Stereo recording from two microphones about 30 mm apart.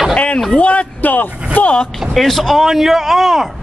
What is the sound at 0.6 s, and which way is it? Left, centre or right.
Speech, left.